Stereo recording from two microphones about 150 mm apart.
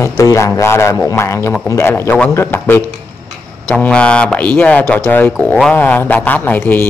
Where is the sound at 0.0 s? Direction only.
20° left (ahead or behind).